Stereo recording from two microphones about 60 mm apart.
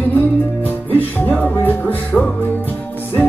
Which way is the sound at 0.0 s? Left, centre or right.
Left.